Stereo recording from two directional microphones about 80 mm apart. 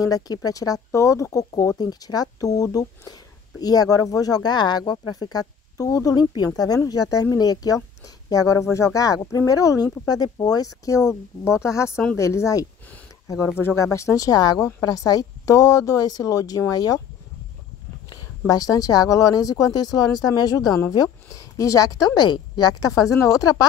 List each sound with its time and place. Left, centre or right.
0.0 s speech: left
1.8 s speech: left
10.0 s speech: left
11.4 s speech: left
18.1 s speech: left
21.5 s speech: left